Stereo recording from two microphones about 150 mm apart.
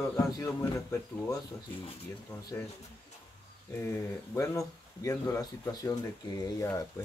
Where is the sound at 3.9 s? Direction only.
20° left (ahead or behind).